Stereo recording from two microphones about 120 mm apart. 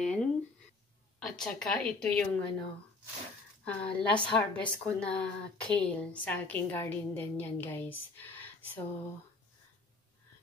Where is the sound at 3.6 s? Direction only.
10° left (ahead or behind).